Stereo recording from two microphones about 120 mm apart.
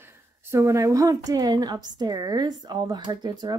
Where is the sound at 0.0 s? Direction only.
20° right (ahead or behind).